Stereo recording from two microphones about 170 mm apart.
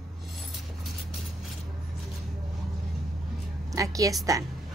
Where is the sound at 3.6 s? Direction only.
20° right (ahead or behind).